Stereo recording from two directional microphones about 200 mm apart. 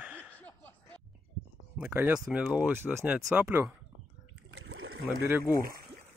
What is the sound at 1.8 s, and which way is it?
Speech, 10° right (ahead or behind).